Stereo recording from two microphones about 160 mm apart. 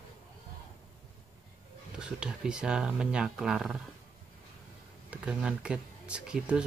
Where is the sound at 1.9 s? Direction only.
5° right (ahead or behind).